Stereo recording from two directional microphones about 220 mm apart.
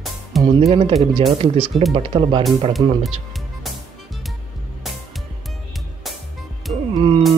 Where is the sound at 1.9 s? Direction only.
25° right (ahead or behind).